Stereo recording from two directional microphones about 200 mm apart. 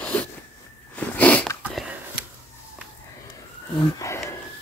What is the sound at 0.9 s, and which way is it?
Sneeze, 10° left (ahead or behind).